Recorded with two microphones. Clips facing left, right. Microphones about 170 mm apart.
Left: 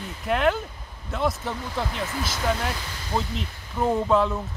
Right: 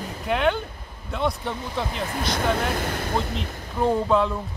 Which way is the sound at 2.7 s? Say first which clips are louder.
Right 5 dB; 55° right (ahead or behind).